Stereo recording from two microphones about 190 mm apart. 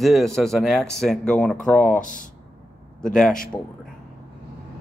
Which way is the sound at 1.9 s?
45° left (ahead or behind).